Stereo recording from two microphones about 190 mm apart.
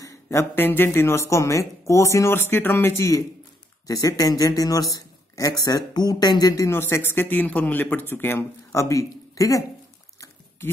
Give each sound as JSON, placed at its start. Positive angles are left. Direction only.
{"t": 0.0, "sound": "speech", "side_deg": 15}